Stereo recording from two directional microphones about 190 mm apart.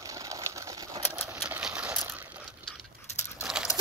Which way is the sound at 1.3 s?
5° right (ahead or behind).